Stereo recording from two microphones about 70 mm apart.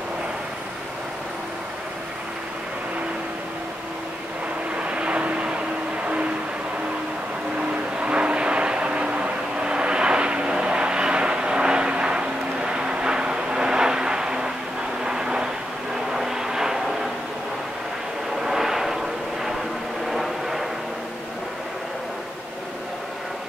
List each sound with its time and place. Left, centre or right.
4.7 s vehicle: centre
8.0 s vehicle: centre
18.4 s vehicle: centre
20.1 s vehicle: centre